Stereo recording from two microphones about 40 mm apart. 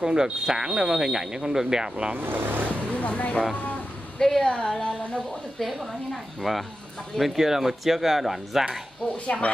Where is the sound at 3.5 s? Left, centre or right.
Left.